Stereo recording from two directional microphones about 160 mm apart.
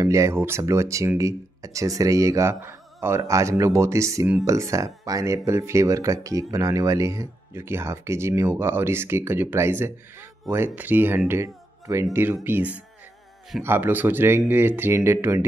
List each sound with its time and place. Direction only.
0.0 s speech: 20° right (ahead or behind)